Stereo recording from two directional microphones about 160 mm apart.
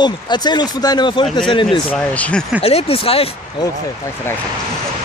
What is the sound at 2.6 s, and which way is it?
Speech, 40° left (ahead or behind).